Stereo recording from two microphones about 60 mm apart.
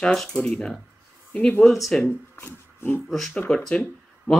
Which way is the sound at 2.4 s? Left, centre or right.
Left.